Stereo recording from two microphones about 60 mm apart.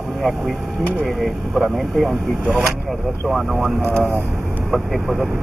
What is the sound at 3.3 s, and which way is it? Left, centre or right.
Speech, centre.